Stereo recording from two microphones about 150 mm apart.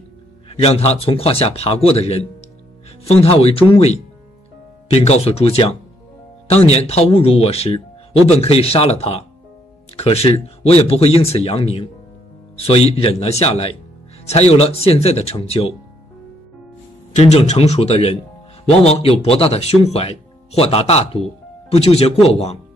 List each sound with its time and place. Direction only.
0.5 s speech: 40° left (ahead or behind)
17.1 s speech: 45° left (ahead or behind)